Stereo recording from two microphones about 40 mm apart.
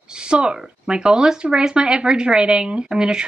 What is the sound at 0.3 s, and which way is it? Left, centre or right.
Speech, right.